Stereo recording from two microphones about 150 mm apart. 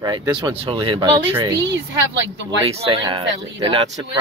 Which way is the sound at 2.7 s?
40° right (ahead or behind).